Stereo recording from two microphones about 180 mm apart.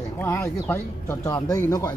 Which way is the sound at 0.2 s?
15° left (ahead or behind).